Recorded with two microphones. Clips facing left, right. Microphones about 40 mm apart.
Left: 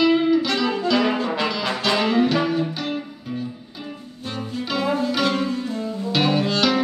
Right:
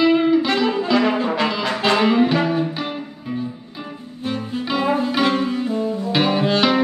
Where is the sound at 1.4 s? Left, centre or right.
Right.